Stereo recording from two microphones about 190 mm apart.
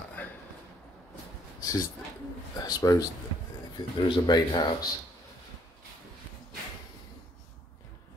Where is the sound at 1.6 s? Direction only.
15° left (ahead or behind).